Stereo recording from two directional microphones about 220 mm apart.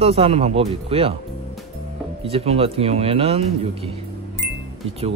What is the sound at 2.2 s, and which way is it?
Speech, 25° right (ahead or behind).